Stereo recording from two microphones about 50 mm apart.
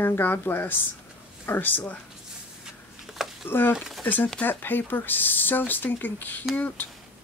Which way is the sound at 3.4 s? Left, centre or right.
Left.